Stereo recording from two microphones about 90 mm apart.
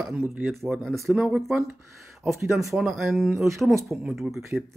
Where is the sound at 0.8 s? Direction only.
Centre (ahead or behind).